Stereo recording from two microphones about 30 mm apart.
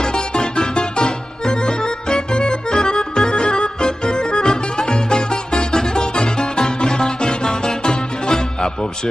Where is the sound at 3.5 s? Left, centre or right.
Left.